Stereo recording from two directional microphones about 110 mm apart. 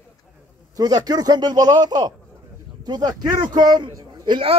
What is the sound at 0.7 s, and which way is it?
A man's voice, 35° right (ahead or behind).